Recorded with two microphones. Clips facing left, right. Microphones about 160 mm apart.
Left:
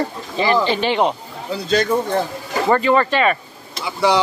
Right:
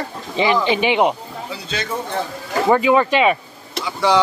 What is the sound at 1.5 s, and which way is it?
Speech, 45° left (ahead or behind).